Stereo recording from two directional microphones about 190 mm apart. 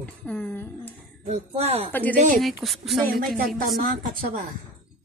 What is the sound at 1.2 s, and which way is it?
Speech, 35° right (ahead or behind).